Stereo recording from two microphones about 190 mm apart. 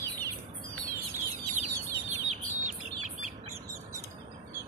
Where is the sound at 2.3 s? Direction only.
40° right (ahead or behind).